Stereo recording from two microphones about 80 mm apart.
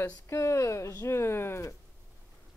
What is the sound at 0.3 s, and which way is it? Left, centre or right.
Speech, left.